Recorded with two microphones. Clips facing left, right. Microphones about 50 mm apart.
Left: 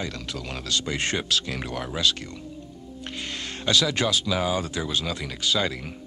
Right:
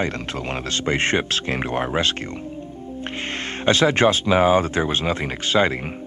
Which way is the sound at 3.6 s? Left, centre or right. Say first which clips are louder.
Right 7 dB; right.